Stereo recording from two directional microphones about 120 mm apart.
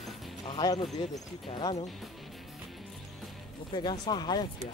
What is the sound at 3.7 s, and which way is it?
Speech, 40° left (ahead or behind).